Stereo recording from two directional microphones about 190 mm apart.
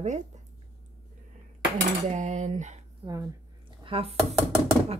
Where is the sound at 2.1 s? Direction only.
40° right (ahead or behind).